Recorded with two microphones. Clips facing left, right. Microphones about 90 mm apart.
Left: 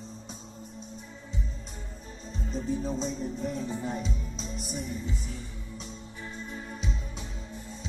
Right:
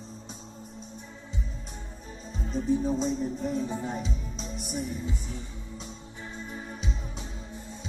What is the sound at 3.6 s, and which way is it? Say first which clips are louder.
Music: right 2 dB; 20° right (ahead or behind).